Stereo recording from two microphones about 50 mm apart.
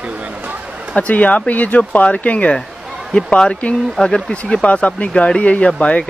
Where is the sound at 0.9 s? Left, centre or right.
Left.